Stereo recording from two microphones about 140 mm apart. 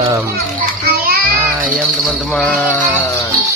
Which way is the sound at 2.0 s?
5° left (ahead or behind).